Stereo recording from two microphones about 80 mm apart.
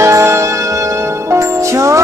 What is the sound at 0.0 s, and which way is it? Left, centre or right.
Music, right.